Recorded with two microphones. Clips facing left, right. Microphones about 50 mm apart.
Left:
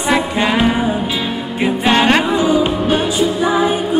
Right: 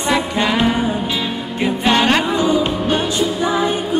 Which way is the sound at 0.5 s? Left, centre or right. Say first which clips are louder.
Left 2 dB; centre.